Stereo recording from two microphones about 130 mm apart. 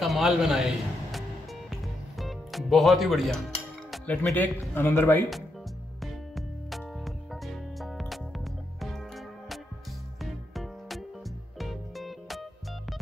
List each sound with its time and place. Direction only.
0.0 s a man's voice: centre (ahead or behind)
1.7 s music: centre (ahead or behind)
4.2 s speech: 15° left (ahead or behind)
6.3 s music: centre (ahead or behind)
10.2 s music: centre (ahead or behind)